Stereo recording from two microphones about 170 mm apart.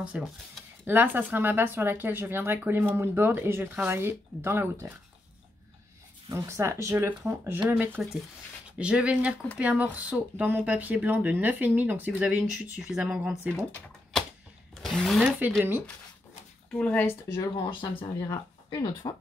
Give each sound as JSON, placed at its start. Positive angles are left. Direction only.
{"t": 0.0, "sound": "speech", "side_deg": -5}
{"t": 6.2, "sound": "speech", "side_deg": -15}
{"t": 14.8, "sound": "speech", "side_deg": 0}
{"t": 16.7, "sound": "speech", "side_deg": 10}